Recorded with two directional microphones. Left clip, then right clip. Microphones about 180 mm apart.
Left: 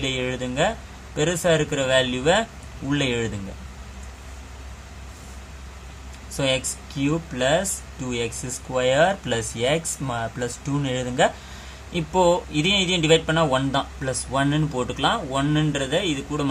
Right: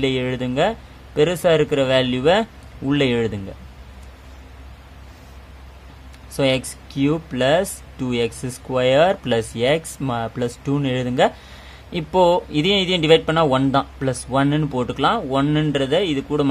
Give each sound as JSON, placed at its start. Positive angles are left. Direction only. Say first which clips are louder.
{"t": 0.0, "sound": "speech", "louder": "right 4 dB", "side_deg": -40}
{"t": 6.3, "sound": "speech", "louder": "right 4 dB", "side_deg": -45}